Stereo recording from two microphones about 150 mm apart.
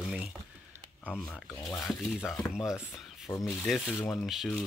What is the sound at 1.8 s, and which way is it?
Speech, centre (ahead or behind).